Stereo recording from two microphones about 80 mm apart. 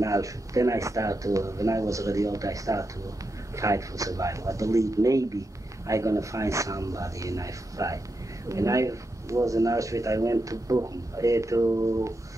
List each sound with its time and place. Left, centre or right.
0.0 s speech: right